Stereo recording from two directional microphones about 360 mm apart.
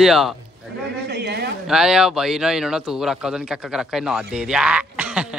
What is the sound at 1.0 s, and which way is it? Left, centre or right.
Speech, right.